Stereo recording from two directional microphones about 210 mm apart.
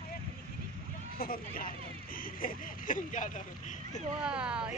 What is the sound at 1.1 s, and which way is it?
Speech, 45° left (ahead or behind).